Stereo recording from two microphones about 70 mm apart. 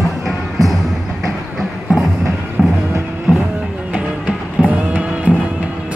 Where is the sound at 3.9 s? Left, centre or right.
Centre.